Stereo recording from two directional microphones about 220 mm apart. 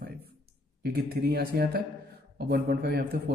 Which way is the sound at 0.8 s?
45° right (ahead or behind).